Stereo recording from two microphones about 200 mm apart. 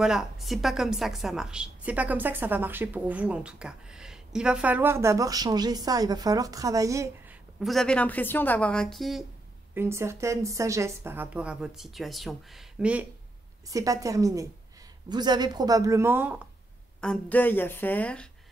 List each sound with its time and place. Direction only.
0.0 s a woman's voice: centre (ahead or behind)
7.6 s a woman's voice: centre (ahead or behind)
9.8 s a woman's voice: 15° right (ahead or behind)
13.7 s a woman's voice: 15° right (ahead or behind)
17.0 s speech: 5° left (ahead or behind)